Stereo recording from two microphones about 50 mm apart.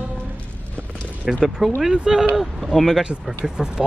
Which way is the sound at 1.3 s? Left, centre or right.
Centre.